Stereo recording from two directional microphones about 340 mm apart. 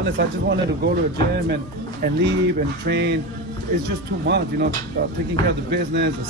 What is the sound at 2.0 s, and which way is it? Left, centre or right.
Speech, right.